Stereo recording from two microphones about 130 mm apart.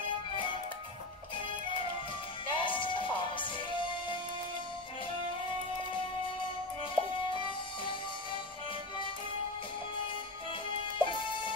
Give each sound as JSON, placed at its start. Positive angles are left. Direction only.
{"t": 2.5, "sound": "music", "side_deg": 40}
{"t": 6.4, "sound": "music", "side_deg": 40}
{"t": 11.0, "sound": "music", "side_deg": 40}